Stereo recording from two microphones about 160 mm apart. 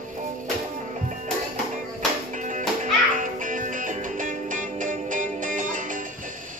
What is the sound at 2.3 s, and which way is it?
Music, 50° right (ahead or behind).